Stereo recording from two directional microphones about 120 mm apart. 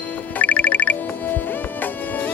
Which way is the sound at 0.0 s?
15° left (ahead or behind).